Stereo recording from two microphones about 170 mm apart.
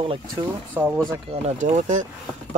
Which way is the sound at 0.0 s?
30° right (ahead or behind).